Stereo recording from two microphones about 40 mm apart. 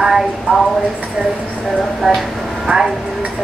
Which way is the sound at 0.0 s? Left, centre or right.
Centre.